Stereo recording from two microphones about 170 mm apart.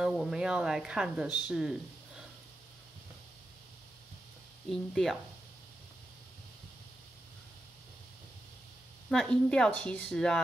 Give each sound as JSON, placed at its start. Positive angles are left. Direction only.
{"t": 0.0, "sound": "speech", "side_deg": -5}
{"t": 4.6, "sound": "speech", "side_deg": 5}
{"t": 9.1, "sound": "speech", "side_deg": 5}